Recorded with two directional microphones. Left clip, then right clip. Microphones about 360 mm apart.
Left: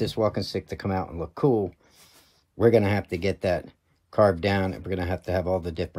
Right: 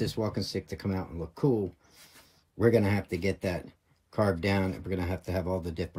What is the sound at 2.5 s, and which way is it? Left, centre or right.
Speech, centre.